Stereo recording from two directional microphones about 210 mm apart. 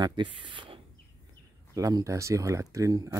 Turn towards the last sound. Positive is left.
turn(degrees=-15)  # may be behind; listen again after turning